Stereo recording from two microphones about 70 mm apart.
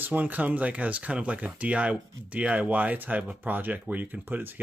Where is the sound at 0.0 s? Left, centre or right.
Right.